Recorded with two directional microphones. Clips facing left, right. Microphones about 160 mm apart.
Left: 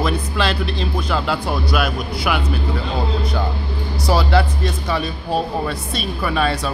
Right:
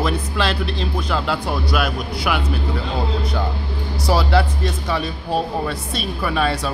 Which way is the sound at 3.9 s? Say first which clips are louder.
Left 1 dB; 5° right (ahead or behind).